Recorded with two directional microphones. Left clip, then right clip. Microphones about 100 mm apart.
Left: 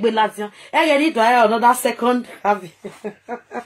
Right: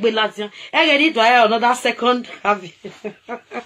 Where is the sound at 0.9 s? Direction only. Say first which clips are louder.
Right 2 dB; 30° left (ahead or behind).